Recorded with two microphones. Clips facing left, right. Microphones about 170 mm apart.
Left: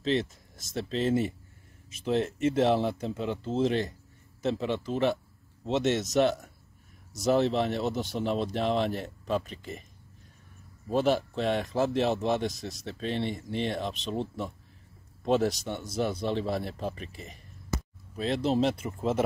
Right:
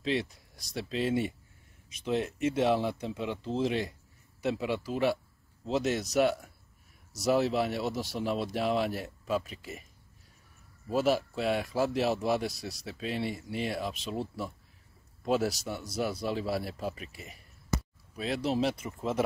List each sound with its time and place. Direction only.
0.0 s speech: centre (ahead or behind)
10.9 s speech: 5° right (ahead or behind)